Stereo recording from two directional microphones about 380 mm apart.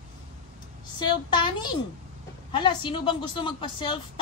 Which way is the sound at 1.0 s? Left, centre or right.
Centre.